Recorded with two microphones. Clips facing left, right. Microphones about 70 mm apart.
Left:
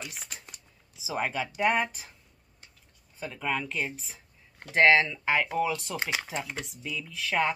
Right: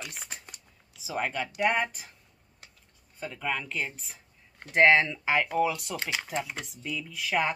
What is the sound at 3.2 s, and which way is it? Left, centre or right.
Speech, centre.